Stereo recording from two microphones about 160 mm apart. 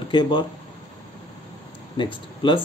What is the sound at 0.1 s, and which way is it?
Speech, 30° left (ahead or behind).